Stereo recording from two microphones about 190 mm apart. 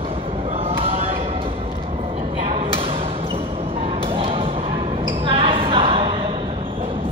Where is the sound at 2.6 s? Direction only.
30° right (ahead or behind).